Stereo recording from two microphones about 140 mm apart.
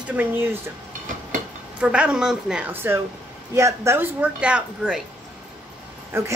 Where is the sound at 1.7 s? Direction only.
10° right (ahead or behind).